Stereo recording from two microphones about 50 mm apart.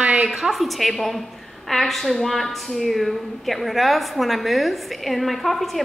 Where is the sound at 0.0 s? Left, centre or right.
Right.